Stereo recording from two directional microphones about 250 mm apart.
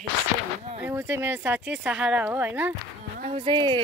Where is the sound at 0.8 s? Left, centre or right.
Centre.